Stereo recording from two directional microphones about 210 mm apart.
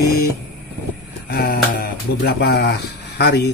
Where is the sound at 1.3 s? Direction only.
40° left (ahead or behind).